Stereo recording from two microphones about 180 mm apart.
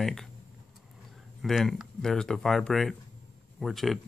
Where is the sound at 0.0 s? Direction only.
Centre (ahead or behind).